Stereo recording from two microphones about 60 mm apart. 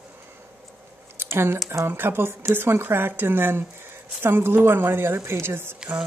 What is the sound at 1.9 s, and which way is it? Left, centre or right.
Speech, right.